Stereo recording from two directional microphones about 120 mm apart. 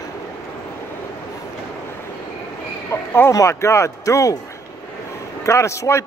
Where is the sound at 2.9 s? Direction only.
20° left (ahead or behind).